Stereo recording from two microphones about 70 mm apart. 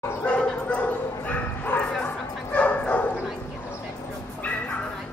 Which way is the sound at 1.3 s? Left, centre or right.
Left.